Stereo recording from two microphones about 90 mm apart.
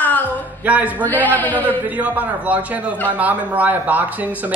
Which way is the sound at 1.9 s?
15° right (ahead or behind).